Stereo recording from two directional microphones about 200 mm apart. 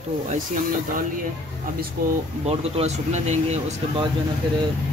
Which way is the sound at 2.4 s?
30° right (ahead or behind).